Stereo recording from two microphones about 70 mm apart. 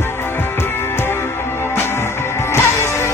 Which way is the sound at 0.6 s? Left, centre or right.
Left.